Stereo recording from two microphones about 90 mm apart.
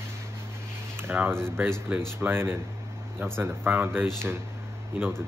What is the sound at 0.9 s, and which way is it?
Speech, 25° right (ahead or behind).